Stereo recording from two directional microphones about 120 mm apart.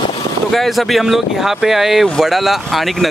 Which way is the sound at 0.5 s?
Centre (ahead or behind).